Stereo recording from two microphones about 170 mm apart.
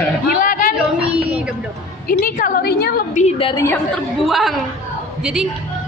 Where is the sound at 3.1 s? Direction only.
40° left (ahead or behind).